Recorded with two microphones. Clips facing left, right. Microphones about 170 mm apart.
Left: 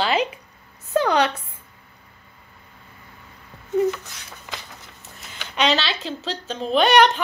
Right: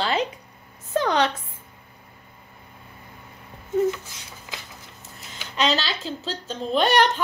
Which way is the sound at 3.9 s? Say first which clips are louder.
Left 2 dB; 65° left (ahead or behind).